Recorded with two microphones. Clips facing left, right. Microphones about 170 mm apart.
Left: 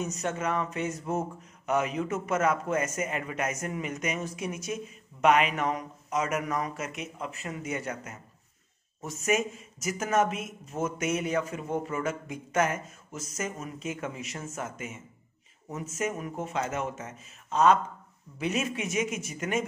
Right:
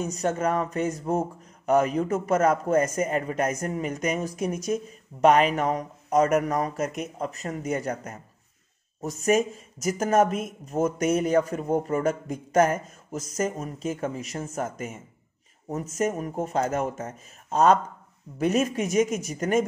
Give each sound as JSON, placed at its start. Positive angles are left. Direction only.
{"t": 0.0, "sound": "a man's voice", "side_deg": -35}
{"t": 16.0, "sound": "a man's voice", "side_deg": -40}